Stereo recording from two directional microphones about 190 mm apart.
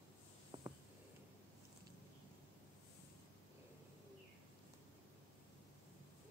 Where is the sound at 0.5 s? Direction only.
25° right (ahead or behind).